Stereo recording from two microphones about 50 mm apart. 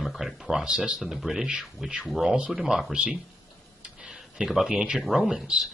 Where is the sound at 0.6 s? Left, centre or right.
Right.